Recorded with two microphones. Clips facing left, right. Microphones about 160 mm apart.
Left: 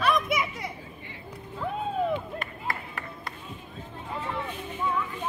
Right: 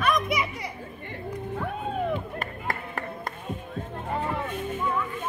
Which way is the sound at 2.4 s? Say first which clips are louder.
Right 2 dB; 45° right (ahead or behind).